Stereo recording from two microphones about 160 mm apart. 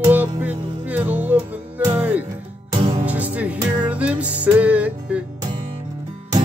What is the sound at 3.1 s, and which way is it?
Music, 10° right (ahead or behind).